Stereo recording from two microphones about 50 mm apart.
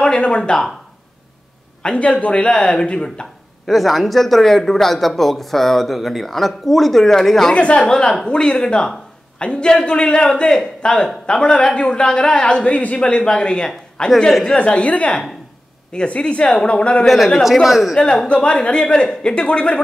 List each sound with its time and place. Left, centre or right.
0.0 s speech: left
1.8 s a man's voice: left
3.6 s speech: centre
7.5 s a man's voice: left
14.6 s a man's voice: left
17.6 s speech: centre
17.9 s a man's voice: centre